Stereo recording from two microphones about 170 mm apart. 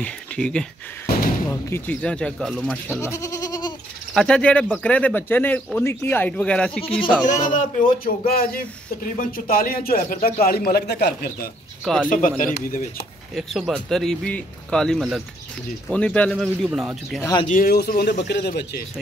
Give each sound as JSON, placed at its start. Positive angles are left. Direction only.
{"t": 0.0, "sound": "speech", "side_deg": 5}
{"t": 1.1, "sound": "slam", "side_deg": 65}
{"t": 1.5, "sound": "speech", "side_deg": 10}
{"t": 3.0, "sound": "goat", "side_deg": 20}
{"t": 4.1, "sound": "speech", "side_deg": 5}
{"t": 6.8, "sound": "speech", "side_deg": 35}
{"t": 7.5, "sound": "speech", "side_deg": 55}
{"t": 11.8, "sound": "speech", "side_deg": 0}
{"t": 12.1, "sound": "speech", "side_deg": 50}
{"t": 13.3, "sound": "speech", "side_deg": 0}
{"t": 17.5, "sound": "speech", "side_deg": 55}